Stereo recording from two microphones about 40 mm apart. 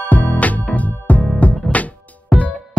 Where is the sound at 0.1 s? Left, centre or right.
Left.